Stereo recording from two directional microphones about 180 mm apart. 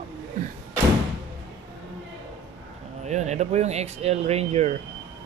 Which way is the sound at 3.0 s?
40° right (ahead or behind).